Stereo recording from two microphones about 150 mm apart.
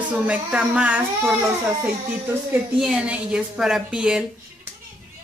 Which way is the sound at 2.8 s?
5° right (ahead or behind).